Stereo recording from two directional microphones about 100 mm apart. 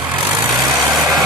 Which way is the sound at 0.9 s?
Centre (ahead or behind).